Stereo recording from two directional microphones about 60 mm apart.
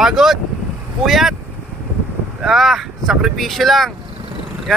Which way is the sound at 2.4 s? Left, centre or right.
Centre.